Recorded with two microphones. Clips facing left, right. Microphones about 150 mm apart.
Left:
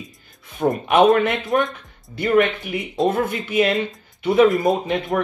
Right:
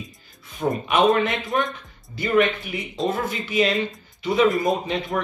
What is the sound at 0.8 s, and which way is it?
Speech, 55° left (ahead or behind).